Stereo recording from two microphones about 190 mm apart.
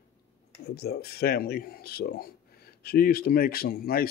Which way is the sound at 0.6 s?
55° left (ahead or behind).